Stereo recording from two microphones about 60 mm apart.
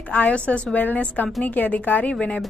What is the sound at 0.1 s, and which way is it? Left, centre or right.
Speech, left.